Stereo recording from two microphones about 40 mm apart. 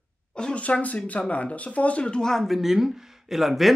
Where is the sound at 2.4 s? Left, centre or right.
Centre.